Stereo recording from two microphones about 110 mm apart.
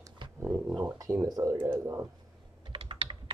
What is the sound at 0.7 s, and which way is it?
Speech, 35° right (ahead or behind).